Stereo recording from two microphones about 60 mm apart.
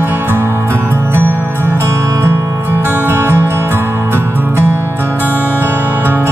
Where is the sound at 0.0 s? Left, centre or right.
Right.